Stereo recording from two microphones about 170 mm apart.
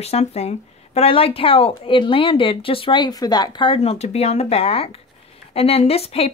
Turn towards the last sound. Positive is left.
turn(degrees=35)  # may be behind; listen again after turning